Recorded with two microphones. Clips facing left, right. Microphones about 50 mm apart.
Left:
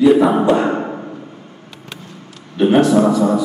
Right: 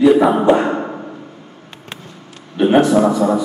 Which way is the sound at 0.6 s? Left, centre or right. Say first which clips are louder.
Left 1 dB; centre.